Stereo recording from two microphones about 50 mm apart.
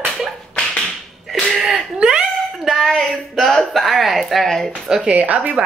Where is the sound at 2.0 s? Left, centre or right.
Right.